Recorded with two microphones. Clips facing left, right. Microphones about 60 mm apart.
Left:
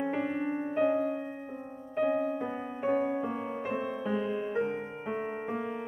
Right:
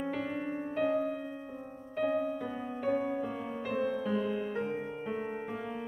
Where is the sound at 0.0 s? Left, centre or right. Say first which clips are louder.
Left 4 dB; left.